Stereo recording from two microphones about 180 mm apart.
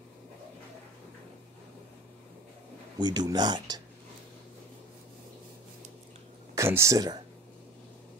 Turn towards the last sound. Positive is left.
turn(degrees=-20)  # may be behind; listen again after turning